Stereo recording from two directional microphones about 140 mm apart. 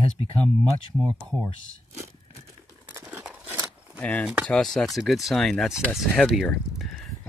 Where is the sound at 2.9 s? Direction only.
20° right (ahead or behind).